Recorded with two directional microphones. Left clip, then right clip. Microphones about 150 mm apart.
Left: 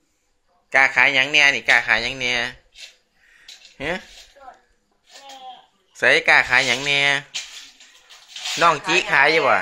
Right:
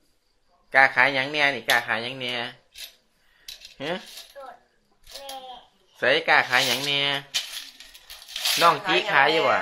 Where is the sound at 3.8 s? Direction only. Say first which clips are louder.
Left 4 dB; 45° left (ahead or behind).